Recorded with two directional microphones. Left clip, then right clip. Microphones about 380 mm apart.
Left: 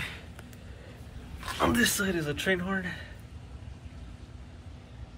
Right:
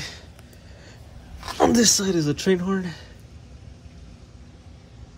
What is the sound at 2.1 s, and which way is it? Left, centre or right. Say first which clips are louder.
Speech: right 7 dB; centre.